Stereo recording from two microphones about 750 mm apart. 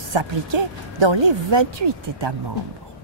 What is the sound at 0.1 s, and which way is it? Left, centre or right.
Speech, right.